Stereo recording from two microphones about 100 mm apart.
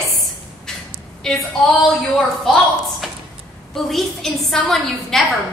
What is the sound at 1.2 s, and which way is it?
Speech, 5° left (ahead or behind).